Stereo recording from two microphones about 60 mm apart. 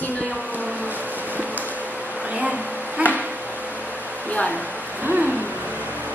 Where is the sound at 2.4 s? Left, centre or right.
Right.